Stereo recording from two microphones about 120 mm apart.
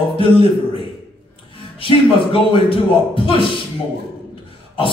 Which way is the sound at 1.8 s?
50° left (ahead or behind).